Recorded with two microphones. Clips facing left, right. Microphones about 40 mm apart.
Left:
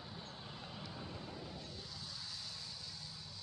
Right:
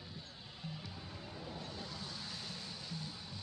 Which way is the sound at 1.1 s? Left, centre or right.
Right.